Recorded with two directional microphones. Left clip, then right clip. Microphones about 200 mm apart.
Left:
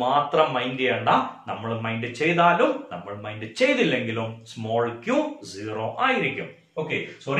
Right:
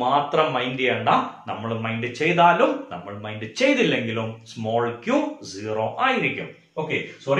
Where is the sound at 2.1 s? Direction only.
15° right (ahead or behind).